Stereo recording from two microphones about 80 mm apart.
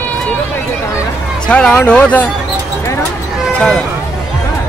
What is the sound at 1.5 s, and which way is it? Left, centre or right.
Speech, centre.